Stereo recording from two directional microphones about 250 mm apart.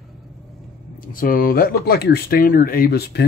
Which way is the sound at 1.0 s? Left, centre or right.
Left.